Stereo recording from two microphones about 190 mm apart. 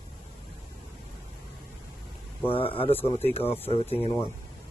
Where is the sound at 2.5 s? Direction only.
30° left (ahead or behind).